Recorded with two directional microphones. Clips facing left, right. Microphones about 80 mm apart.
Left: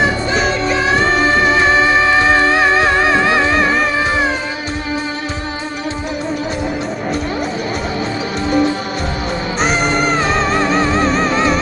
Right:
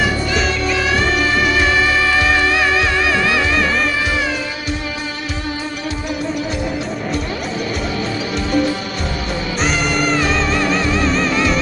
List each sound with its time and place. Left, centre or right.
0.4 s music: left
9.6 s music: left